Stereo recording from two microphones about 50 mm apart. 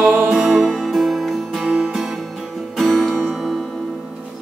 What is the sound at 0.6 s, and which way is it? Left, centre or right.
Music, centre.